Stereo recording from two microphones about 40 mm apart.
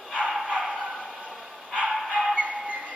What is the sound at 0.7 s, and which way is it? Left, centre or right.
Bow-wow, right.